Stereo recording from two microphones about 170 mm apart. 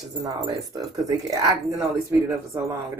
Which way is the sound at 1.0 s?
20° right (ahead or behind).